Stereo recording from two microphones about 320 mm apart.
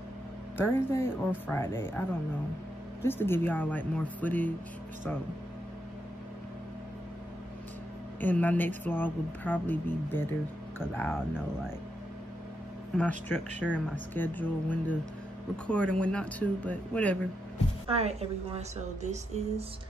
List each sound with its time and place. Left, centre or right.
0.6 s speech: centre
8.2 s speech: centre
13.6 s speech: centre
17.8 s a woman's voice: centre
19.0 s a sound: centre